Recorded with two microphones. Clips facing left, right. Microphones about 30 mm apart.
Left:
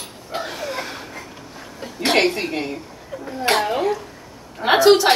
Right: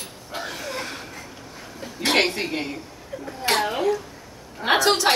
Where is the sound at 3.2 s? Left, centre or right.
Left.